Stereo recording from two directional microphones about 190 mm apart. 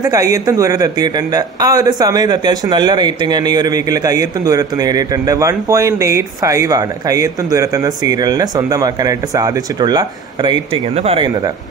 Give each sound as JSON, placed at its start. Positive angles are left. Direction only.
{"t": 0.0, "sound": "speech", "side_deg": -20}